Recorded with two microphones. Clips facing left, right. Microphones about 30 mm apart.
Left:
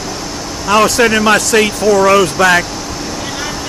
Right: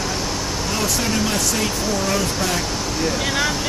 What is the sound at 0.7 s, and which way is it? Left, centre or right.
Speech, left.